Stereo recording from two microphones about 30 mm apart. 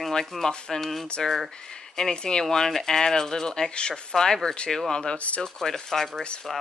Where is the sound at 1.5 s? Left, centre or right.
Left.